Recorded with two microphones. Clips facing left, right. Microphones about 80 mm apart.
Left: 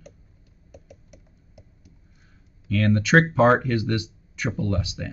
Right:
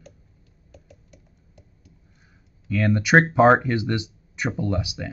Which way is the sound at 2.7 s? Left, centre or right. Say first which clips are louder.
Even; centre.